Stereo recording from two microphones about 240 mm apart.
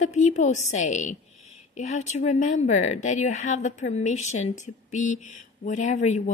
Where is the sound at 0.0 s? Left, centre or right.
Left.